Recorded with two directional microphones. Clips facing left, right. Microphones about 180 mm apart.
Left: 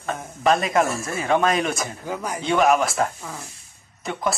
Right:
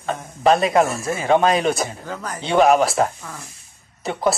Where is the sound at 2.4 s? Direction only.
30° right (ahead or behind).